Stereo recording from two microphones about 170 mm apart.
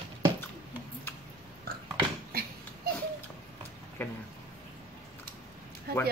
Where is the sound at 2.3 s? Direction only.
65° right (ahead or behind).